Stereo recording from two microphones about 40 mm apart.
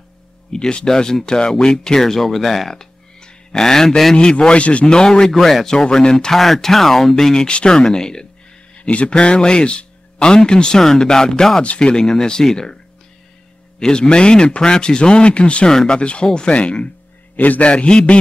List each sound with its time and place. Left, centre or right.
0.5 s speech: left; by 2.8 s centre
2.8 s a sound: centre
4.1 s speech: centre
4.6 s speech: left
4.8 s speech: left
5.3 s speech: centre
5.9 s speech: centre
6.1 s speech: centre
7.3 s speech: left
8.7 s speech: left
13.7 s speech: left
17.6 s speech: left